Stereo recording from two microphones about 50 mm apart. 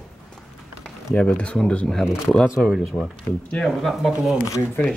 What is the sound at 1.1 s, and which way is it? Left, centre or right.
Speech, left.